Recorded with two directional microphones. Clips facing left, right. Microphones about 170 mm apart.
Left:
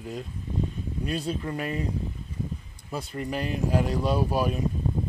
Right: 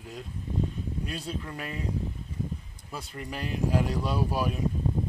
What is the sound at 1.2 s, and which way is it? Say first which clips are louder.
Speech: left 6 dB; centre (ahead or behind).